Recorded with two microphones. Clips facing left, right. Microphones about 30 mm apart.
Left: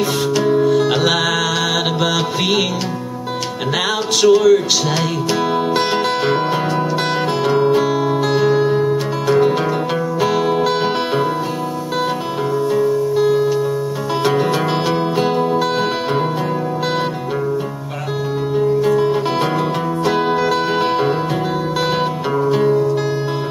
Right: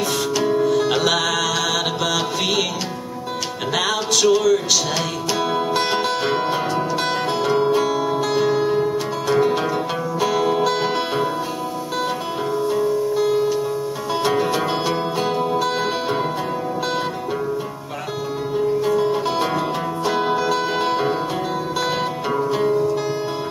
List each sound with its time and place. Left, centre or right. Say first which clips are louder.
0.5 s music: left 4 dB; centre
4.2 s speech: left 6 dB; centre
5.5 s music: left 2 dB; centre
12.7 s music: left 4 dB; centre
18.8 s music: left 4 dB; centre
22.4 s music: left 5 dB; centre